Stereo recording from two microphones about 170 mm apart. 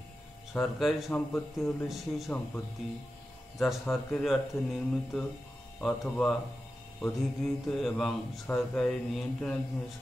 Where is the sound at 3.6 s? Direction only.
Centre (ahead or behind).